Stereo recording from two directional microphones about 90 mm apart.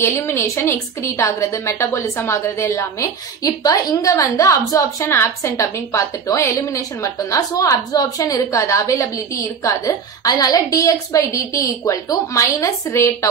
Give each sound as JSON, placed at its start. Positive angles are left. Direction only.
{"t": 0.0, "sound": "a woman's voice", "side_deg": 30}